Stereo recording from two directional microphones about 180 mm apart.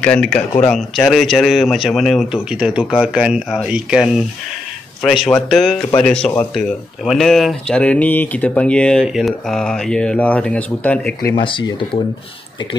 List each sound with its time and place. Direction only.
0.0 s speech: 5° left (ahead or behind)
11.3 s speech: 25° left (ahead or behind)